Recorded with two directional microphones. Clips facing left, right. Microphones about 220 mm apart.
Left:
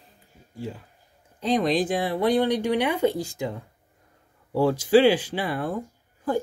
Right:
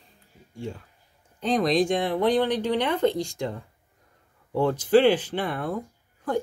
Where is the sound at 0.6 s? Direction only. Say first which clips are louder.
Even; 5° left (ahead or behind).